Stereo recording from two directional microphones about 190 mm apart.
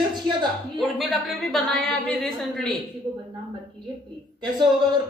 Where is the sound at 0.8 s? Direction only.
Centre (ahead or behind).